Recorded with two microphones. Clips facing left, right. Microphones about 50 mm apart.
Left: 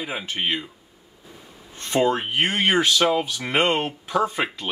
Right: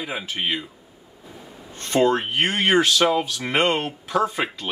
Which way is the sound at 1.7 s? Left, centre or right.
Centre.